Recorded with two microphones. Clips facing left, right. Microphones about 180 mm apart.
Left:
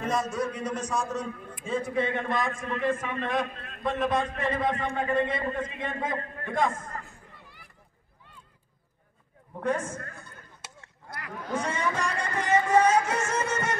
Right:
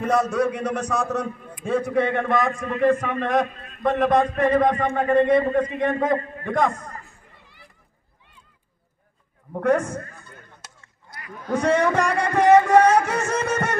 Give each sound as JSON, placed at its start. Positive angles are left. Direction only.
{"t": 0.0, "sound": "a man's voice", "side_deg": -65}
{"t": 9.5, "sound": "a man's voice", "side_deg": -65}
{"t": 11.6, "sound": "a man's voice", "side_deg": -65}